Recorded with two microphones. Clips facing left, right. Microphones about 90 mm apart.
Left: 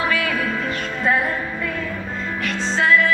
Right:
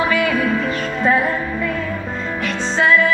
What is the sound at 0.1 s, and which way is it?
Music, 20° right (ahead or behind).